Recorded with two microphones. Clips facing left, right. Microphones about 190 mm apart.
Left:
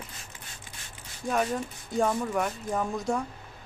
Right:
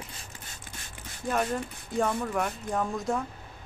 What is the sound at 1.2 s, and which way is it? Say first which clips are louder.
Speech: left 1 dB; centre (ahead or behind).